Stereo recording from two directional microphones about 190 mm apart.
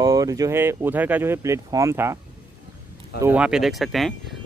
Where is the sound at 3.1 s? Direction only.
10° right (ahead or behind).